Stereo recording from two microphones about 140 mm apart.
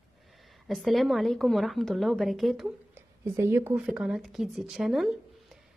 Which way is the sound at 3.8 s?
5° right (ahead or behind).